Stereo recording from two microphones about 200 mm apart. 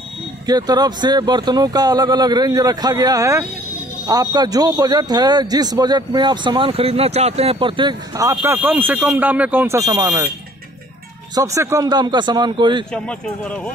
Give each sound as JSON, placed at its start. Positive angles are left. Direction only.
{"t": 0.5, "sound": "a man's voice", "side_deg": -20}
{"t": 11.3, "sound": "a man's voice", "side_deg": -15}
{"t": 12.9, "sound": "a man's voice", "side_deg": 5}